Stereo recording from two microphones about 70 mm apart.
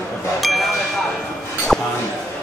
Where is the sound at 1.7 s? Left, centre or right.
Centre.